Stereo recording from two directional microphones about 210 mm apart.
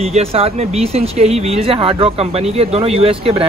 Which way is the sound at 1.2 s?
25° right (ahead or behind).